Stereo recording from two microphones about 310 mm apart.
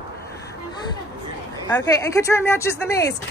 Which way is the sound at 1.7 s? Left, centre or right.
Centre.